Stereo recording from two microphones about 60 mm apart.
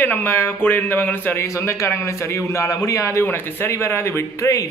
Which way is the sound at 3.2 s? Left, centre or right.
Left.